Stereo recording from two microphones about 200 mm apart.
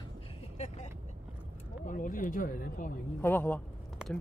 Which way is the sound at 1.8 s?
40° left (ahead or behind).